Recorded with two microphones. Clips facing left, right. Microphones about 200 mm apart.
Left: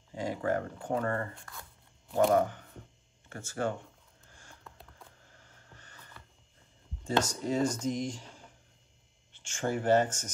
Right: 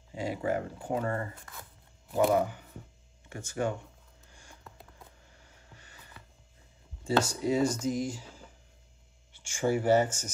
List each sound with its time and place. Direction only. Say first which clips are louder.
0.1 s speech: even; 10° right (ahead or behind)
1.5 s a sound: right 1 dB; 5° right (ahead or behind)
3.3 s speech: right 1 dB; 15° right (ahead or behind)
4.3 s a sound: right 1 dB; 15° right (ahead or behind)
5.7 s music: even; 10° right (ahead or behind)
7.1 s speech: right 3 dB; 10° right (ahead or behind)